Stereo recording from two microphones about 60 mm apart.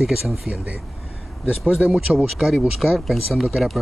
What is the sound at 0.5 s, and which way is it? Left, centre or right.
Speech, right.